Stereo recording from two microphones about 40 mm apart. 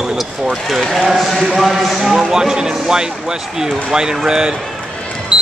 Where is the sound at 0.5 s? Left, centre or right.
Centre.